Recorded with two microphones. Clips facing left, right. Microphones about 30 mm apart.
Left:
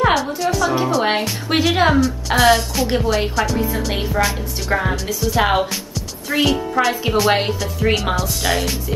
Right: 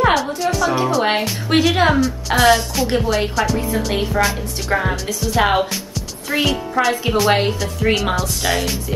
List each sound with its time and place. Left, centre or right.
0.0 s a woman's voice: centre